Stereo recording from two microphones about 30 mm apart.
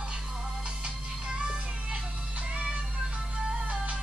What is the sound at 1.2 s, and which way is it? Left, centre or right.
Music, right.